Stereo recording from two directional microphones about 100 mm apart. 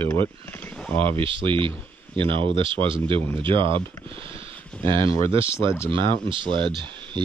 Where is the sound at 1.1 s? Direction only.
60° right (ahead or behind).